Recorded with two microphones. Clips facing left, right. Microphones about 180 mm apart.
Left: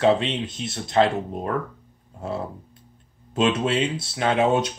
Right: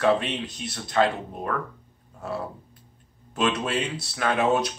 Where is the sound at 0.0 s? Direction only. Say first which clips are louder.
Left 3 dB; 25° left (ahead or behind).